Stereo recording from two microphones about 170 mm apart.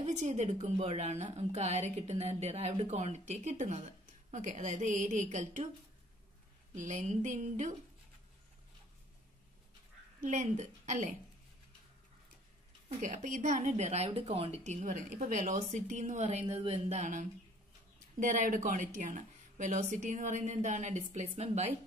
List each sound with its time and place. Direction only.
0.0 s a woman's voice: 40° right (ahead or behind)
6.7 s a woman's voice: 45° right (ahead or behind)
10.2 s a woman's voice: 45° right (ahead or behind)
13.0 s a woman's voice: 50° right (ahead or behind)